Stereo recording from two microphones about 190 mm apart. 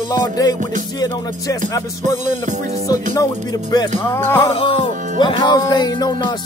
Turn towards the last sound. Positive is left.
turn(degrees=20)  # may be behind; listen again after turning